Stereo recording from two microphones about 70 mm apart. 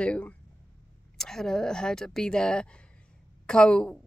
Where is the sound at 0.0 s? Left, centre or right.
Centre.